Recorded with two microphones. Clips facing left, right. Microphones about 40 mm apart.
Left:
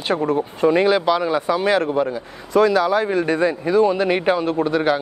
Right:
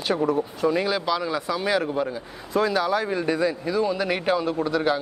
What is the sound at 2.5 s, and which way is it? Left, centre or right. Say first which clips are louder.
Speech: left 7 dB; left.